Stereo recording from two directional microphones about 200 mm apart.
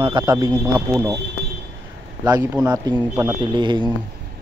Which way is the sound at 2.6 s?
20° right (ahead or behind).